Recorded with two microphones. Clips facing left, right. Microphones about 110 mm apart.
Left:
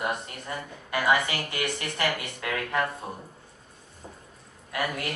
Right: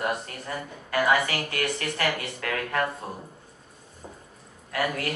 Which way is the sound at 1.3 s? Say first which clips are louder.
Right 2 dB; centre (ahead or behind).